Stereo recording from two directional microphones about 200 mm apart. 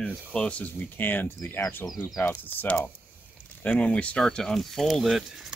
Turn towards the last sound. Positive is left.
turn(degrees=0)  # may be behind; listen again after turning